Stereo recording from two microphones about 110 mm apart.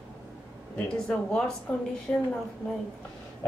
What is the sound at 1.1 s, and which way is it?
A woman's voice, 10° left (ahead or behind).